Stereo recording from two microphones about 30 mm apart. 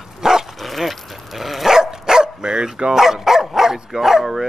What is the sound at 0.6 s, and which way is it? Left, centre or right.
Dog, centre.